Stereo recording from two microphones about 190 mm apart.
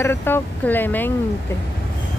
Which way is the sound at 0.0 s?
10° left (ahead or behind).